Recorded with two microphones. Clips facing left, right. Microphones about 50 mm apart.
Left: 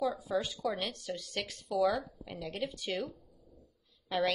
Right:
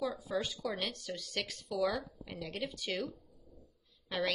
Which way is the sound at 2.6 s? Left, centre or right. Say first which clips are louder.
Left 2 dB; left.